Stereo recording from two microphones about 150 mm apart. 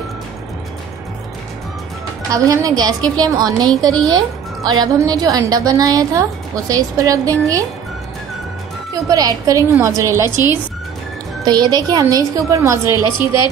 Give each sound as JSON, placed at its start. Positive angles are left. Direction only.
{"t": 2.3, "sound": "a woman's voice", "side_deg": -20}
{"t": 9.0, "sound": "a woman's voice", "side_deg": -25}
{"t": 11.4, "sound": "a woman's voice", "side_deg": -25}